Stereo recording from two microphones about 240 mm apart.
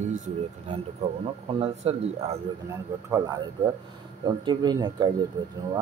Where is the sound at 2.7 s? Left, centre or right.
Centre.